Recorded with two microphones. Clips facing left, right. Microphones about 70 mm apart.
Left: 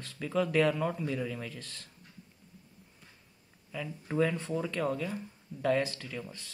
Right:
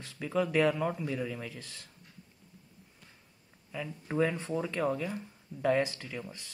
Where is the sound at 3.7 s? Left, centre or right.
Centre.